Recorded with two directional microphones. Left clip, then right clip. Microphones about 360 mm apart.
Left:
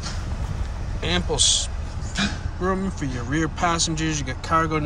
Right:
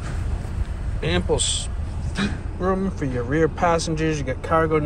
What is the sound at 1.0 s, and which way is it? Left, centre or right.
Speech, centre.